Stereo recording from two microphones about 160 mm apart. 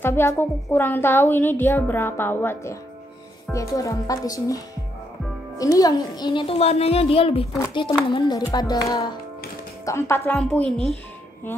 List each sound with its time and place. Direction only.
0.0 s a woman's voice: 15° left (ahead or behind)
5.6 s a woman's voice: 20° left (ahead or behind); by 7.4 s 35° left (ahead or behind)
8.1 s a woman's voice: 25° left (ahead or behind); by 11.0 s 5° left (ahead or behind)